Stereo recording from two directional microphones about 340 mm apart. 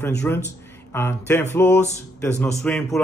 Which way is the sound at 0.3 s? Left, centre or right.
Centre.